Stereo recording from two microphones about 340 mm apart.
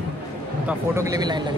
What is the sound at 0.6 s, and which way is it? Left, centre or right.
Speech, centre.